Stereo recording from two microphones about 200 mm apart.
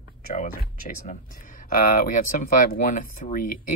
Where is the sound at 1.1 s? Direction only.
45° left (ahead or behind).